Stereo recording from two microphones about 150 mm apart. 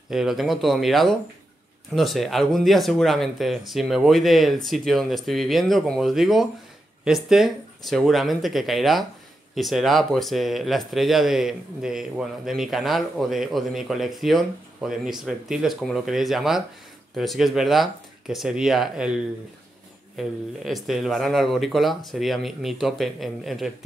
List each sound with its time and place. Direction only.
0.1 s speech: centre (ahead or behind)
20.2 s speech: centre (ahead or behind)